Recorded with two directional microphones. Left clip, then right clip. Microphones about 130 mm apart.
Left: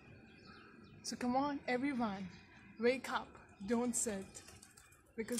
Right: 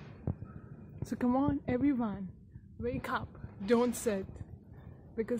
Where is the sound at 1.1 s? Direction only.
25° right (ahead or behind).